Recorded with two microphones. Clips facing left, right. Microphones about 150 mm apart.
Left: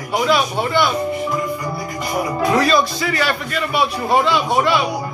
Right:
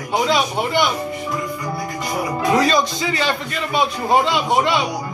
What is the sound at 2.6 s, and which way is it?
Speech, 20° right (ahead or behind).